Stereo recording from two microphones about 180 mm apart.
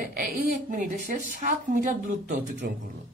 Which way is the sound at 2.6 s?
65° right (ahead or behind).